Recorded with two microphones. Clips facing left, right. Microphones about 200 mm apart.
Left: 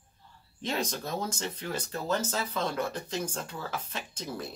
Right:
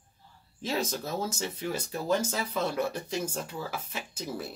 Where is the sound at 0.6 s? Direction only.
5° right (ahead or behind).